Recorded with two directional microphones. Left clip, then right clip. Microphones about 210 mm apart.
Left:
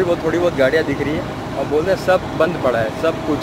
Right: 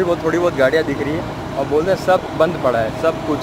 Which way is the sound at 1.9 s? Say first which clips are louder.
Even; centre (ahead or behind).